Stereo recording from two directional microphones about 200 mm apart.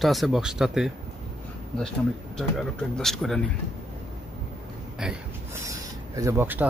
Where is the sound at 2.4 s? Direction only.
Centre (ahead or behind).